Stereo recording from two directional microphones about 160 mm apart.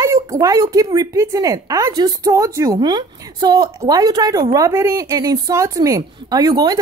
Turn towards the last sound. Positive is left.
turn(degrees=-25)  # may be behind; listen again after turning